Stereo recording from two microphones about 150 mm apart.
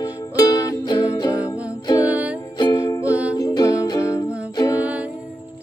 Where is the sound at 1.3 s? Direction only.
10° right (ahead or behind).